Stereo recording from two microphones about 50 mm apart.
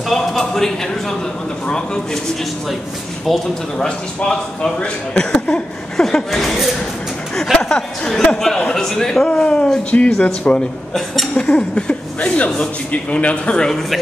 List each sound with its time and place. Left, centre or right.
0.1 s a sound: centre
3.3 s speech: centre
3.7 s speech: centre
6.0 s speech: centre
7.5 s speech: centre
9.3 s a man's voice: left
10.9 s speech: centre
11.7 s a man's voice: left